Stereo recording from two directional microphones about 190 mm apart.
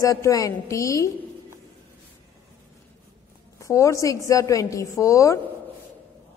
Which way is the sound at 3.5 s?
15° left (ahead or behind).